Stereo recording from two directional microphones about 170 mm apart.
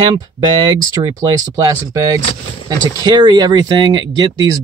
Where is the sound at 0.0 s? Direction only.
30° right (ahead or behind).